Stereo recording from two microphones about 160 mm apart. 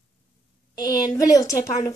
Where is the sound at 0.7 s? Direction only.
25° left (ahead or behind).